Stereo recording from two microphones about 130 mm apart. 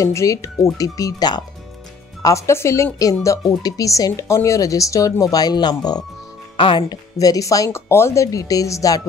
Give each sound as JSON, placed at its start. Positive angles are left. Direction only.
{"t": 0.0, "sound": "speech", "side_deg": 25}
{"t": 6.5, "sound": "speech", "side_deg": 40}
{"t": 6.9, "sound": "speech", "side_deg": 30}